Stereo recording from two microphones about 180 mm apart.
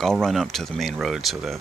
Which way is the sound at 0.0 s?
Centre (ahead or behind).